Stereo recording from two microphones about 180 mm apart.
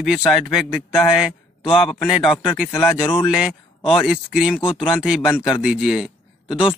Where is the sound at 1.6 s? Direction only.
30° left (ahead or behind).